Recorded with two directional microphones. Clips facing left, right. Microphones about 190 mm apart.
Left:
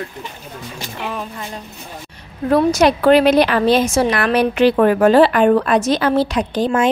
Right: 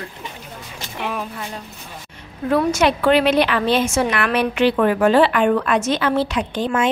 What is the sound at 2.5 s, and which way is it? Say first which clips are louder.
Speech: left 4 dB; 40° left (ahead or behind).